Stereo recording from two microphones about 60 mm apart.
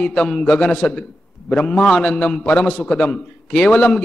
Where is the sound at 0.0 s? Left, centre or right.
Centre.